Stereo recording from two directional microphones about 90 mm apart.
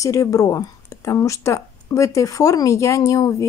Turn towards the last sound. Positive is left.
turn(degrees=35)  # may be behind; listen again after turning